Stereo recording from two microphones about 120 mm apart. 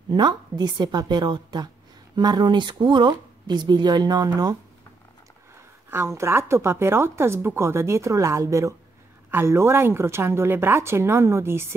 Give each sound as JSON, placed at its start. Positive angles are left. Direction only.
{"t": 0.1, "sound": "speech", "side_deg": -35}
{"t": 5.9, "sound": "speech", "side_deg": -20}